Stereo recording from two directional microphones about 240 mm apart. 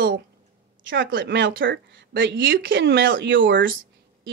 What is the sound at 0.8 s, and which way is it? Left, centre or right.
Speech, right.